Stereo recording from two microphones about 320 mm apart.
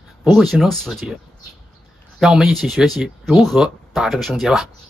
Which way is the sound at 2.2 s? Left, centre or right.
Centre.